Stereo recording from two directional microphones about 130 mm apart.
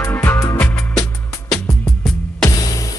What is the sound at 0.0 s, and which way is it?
Music, 15° left (ahead or behind).